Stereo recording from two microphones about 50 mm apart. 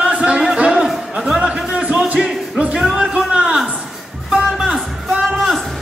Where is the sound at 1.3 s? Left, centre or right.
Centre.